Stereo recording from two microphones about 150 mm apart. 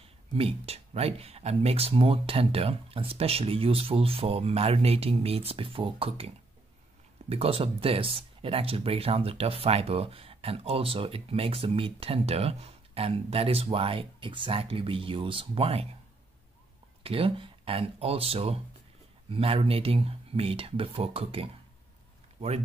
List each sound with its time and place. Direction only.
0.0 s speech: 40° right (ahead or behind)
17.0 s speech: 40° right (ahead or behind)